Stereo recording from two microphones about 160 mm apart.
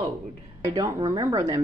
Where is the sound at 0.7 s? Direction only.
20° right (ahead or behind).